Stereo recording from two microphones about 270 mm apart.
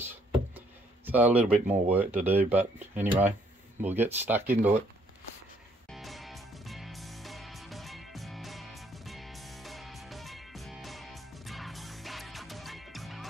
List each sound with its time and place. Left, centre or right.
0.0 s speech: centre
5.9 s music: centre